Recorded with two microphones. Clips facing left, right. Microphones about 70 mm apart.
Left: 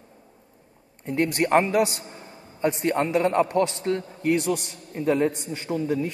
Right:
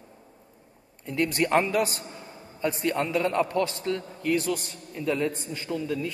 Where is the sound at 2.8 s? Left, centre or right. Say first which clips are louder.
Left 3 dB; left.